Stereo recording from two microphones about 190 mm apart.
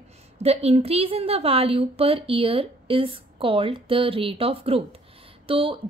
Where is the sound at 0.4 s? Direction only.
35° right (ahead or behind).